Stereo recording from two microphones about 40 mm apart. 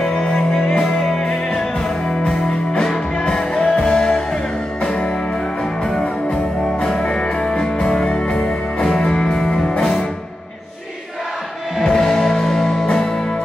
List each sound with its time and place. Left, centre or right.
0.0 s music: centre
4.8 s music: left
6.8 s music: centre
11.8 s music: centre